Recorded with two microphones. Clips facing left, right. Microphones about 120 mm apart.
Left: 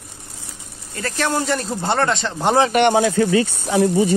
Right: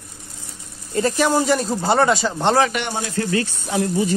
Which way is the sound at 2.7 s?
65° left (ahead or behind).